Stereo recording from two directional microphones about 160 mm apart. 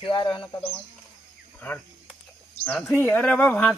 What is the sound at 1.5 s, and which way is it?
A man's voice, 10° left (ahead or behind).